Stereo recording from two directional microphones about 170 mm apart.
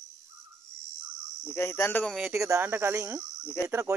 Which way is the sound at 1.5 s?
15° left (ahead or behind).